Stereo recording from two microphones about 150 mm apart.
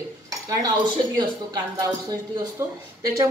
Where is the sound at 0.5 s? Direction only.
25° right (ahead or behind).